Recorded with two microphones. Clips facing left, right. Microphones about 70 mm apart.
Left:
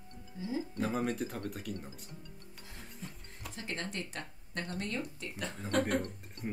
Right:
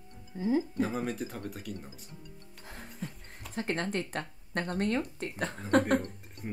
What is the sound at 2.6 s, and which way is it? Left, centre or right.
Music, right.